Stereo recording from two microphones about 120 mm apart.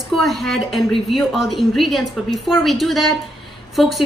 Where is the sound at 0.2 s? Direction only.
Centre (ahead or behind).